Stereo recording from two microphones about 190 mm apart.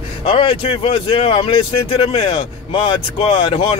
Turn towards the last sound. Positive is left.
turn(degrees=30)  # may be behind; listen again after turning